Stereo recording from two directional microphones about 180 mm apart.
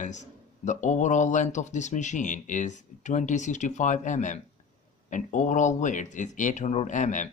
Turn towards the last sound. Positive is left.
turn(degrees=45)  # may be behind; listen again after turning